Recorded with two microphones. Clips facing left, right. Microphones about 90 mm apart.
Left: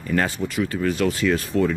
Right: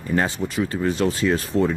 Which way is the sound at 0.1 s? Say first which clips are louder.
Even; 25° right (ahead or behind).